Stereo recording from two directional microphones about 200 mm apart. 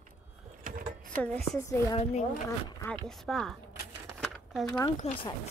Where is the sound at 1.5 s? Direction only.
15° left (ahead or behind).